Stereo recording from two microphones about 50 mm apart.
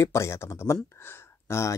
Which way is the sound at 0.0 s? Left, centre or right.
Left.